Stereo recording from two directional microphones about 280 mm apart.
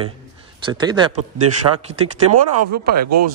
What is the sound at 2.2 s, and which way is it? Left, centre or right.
Speech, right.